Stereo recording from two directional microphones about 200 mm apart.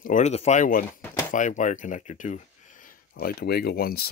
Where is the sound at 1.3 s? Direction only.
40° left (ahead or behind).